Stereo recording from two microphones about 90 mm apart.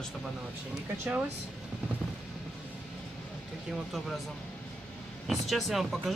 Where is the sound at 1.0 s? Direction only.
25° right (ahead or behind).